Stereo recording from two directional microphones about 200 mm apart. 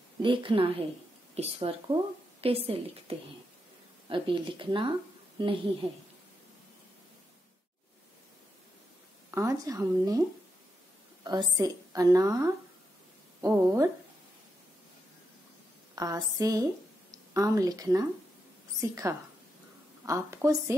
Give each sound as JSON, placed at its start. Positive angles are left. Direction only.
{"t": 0.2, "sound": "speech", "side_deg": -25}
{"t": 9.3, "sound": "speech", "side_deg": -15}
{"t": 11.2, "sound": "speech", "side_deg": -20}
{"t": 15.9, "sound": "speech", "side_deg": -15}